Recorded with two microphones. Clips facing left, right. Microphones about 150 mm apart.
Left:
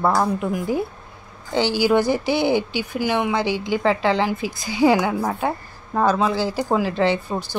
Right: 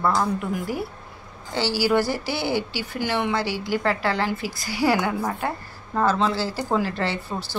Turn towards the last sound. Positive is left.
turn(degrees=15)  # may be behind; listen again after turning